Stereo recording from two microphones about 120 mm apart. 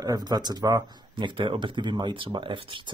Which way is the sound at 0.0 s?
35° right (ahead or behind).